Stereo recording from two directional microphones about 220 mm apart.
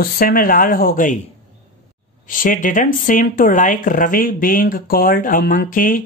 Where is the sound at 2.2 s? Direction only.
40° left (ahead or behind).